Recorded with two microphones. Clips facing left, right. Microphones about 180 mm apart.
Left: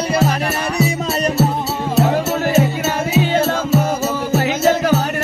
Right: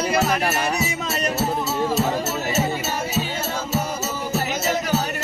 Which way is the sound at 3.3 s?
60° left (ahead or behind).